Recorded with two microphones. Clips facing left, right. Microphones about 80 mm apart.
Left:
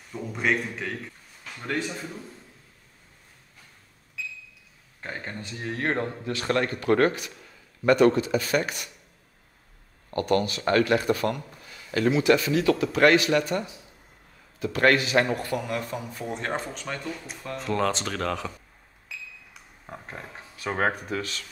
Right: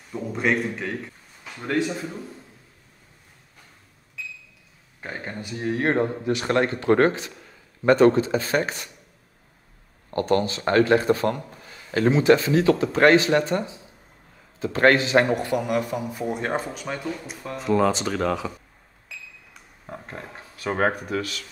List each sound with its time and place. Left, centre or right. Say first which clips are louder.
0.1 s a man's voice: right 3 dB; centre
5.0 s a man's voice: right 2 dB; centre; by 8.9 s right
10.1 s a man's voice: right 2 dB; right; by 18.5 s centre
19.0 s a sound: left 1 dB; centre
20.6 s speech: right 3 dB; centre
21.2 s speech: right 3 dB; left